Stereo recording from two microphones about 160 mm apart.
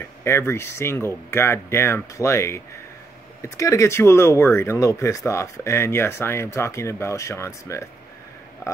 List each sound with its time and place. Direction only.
0.0 s speech: 15° left (ahead or behind)